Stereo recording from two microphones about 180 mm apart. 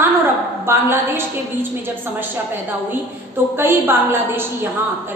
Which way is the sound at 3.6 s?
15° right (ahead or behind).